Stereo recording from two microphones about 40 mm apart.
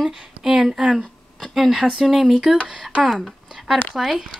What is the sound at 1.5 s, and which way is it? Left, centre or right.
Speech, centre.